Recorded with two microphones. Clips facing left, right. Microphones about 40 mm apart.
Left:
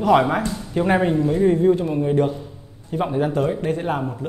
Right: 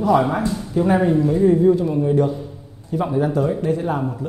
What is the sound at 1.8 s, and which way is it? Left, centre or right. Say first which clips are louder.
Speech: right 1 dB; left.